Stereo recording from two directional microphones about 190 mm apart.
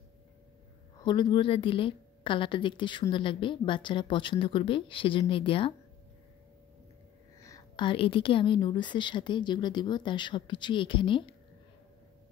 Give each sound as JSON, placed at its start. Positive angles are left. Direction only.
{"t": 1.0, "sound": "a woman's voice", "side_deg": 25}
{"t": 7.4, "sound": "a woman's voice", "side_deg": 20}